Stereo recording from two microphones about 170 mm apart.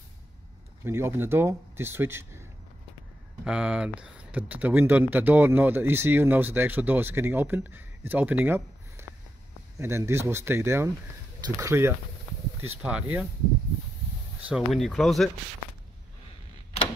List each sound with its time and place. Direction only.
0.8 s speech: 15° right (ahead or behind)
3.4 s speech: 5° right (ahead or behind)
14.5 s speech: centre (ahead or behind)